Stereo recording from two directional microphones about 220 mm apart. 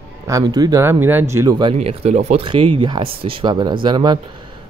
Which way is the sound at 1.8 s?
30° right (ahead or behind).